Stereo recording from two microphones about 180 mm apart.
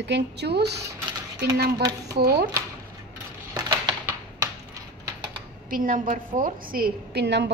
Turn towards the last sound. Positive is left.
turn(degrees=-70)  # may be behind; listen again after turning